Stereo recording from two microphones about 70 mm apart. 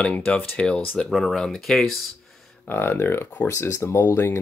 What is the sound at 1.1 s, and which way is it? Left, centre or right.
Speech, centre.